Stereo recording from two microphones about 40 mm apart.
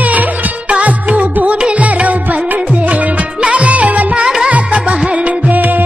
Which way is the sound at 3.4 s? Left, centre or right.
Right.